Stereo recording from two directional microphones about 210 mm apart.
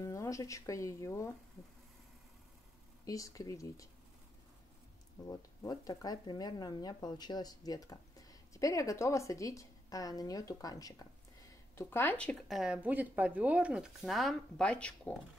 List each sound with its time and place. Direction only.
0.0 s speech: 15° left (ahead or behind)
3.1 s speech: 15° left (ahead or behind)
5.2 s speech: 15° left (ahead or behind)